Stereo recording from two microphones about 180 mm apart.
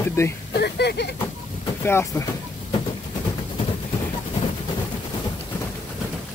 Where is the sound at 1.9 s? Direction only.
15° left (ahead or behind).